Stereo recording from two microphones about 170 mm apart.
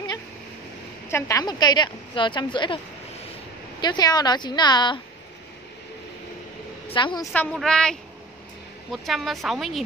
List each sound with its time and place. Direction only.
1.0 s a woman's voice: 15° left (ahead or behind)
3.8 s a woman's voice: 25° left (ahead or behind)
6.9 s a woman's voice: 30° left (ahead or behind)
7.3 s speech: 5° left (ahead or behind)